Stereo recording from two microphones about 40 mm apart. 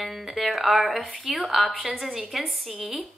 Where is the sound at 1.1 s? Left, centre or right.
Centre.